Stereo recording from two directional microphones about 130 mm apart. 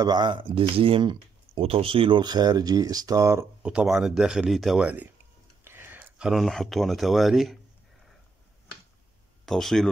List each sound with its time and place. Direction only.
0.0 s speech: 35° right (ahead or behind)
3.6 s speech: 5° right (ahead or behind)
4.8 s speech: 10° right (ahead or behind)
9.5 s speech: 5° left (ahead or behind)